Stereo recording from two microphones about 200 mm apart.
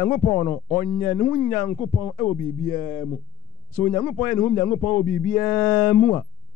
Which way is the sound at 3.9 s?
15° left (ahead or behind).